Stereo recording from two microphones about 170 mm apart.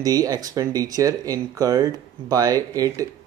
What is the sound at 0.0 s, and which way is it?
Speech, 20° right (ahead or behind).